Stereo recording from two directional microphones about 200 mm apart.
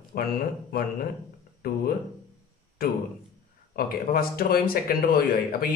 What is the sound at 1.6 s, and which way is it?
Speech, 50° left (ahead or behind).